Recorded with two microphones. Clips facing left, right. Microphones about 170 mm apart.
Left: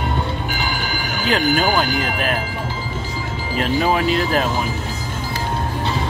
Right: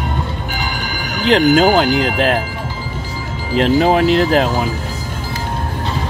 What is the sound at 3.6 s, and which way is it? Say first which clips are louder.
Speech: right 6 dB; 80° right.